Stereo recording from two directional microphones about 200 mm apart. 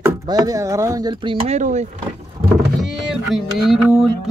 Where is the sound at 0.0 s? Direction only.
20° right (ahead or behind).